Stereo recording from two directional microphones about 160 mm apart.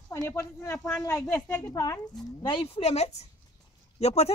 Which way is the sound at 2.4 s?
35° left (ahead or behind).